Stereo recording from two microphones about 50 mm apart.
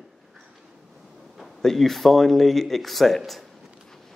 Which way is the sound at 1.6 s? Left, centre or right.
Centre.